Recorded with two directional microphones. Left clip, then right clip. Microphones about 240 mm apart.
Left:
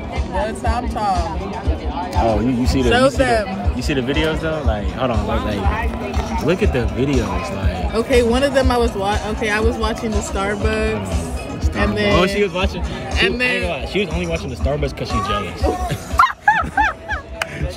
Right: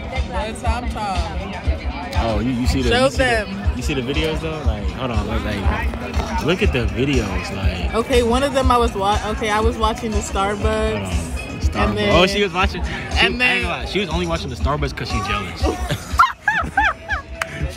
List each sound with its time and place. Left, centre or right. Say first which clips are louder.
0.7 s speech: left 4 dB; right
2.1 s speech: left 4 dB; centre
5.1 s speech: left 3 dB; centre
15.1 s speech: left 3 dB; centre
15.6 s music: left 2 dB; centre